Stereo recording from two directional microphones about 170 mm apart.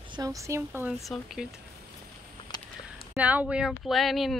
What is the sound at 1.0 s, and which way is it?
Speech, centre (ahead or behind).